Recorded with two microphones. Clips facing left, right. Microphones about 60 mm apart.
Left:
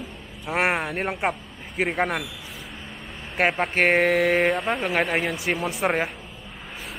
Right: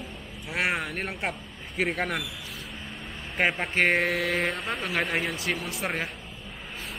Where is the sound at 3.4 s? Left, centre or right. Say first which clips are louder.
Left 3 dB; centre.